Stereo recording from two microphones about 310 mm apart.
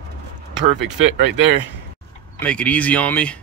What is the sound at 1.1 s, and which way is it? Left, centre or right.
Speech, right.